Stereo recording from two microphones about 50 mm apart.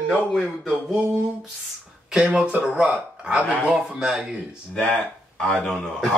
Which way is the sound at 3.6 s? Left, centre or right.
Centre.